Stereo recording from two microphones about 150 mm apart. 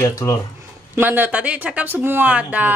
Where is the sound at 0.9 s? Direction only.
10° right (ahead or behind).